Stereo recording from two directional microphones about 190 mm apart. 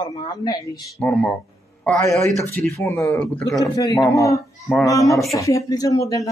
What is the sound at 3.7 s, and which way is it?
Speech, 20° left (ahead or behind).